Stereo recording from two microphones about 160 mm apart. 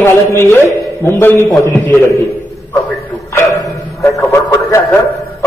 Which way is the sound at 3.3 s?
20° left (ahead or behind).